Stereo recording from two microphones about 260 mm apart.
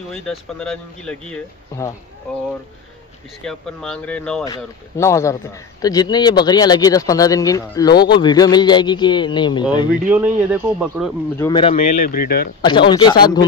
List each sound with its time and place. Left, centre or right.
0.1 s speech: centre
3.4 s a man's voice: centre
10.0 s a man's voice: centre
11.3 s speech: centre; by 12.4 s left
12.6 s a man's voice: centre